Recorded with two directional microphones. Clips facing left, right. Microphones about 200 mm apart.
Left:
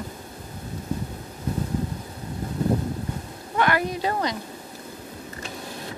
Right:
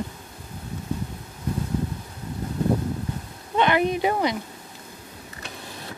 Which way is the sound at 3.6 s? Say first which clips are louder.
Right 3 dB; 20° right (ahead or behind).